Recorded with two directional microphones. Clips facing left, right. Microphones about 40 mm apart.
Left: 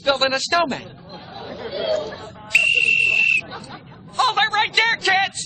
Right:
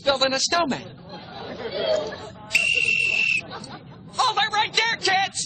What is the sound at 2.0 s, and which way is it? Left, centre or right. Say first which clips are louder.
Whistle: left 1 dB; left.